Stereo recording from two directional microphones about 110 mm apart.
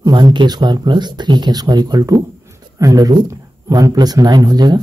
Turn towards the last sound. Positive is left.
turn(degrees=-40)  # may be behind; listen again after turning